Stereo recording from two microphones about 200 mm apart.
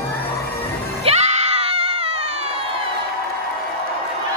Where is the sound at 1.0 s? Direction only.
30° right (ahead or behind).